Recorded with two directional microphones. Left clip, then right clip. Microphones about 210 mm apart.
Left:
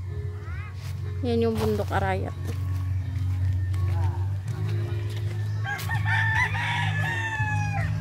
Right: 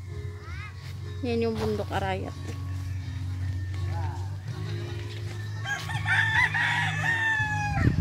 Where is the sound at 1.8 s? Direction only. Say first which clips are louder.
Left 3 dB; centre (ahead or behind).